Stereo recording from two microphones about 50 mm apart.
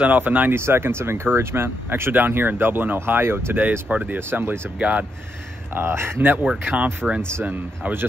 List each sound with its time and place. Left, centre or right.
0.0 s speech: right
0.6 s speech: right
3.9 s speech: right
4.3 s speech: right
4.7 s speech: right
5.8 s speech: right
7.0 s speech: centre